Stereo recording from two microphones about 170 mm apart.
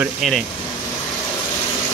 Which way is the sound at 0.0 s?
Centre (ahead or behind).